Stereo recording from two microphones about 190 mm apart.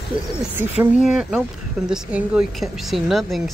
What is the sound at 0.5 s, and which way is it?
Speech, 5° right (ahead or behind).